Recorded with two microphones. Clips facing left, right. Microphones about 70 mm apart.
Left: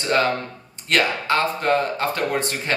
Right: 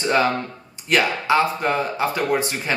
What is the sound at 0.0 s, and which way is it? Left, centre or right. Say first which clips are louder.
Speech: right 1 dB; centre.